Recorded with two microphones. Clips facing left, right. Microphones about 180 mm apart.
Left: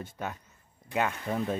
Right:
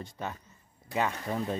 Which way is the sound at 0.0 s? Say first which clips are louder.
Left 1 dB; 5° left (ahead or behind).